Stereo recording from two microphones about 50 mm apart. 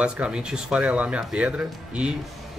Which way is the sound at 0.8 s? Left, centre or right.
Right.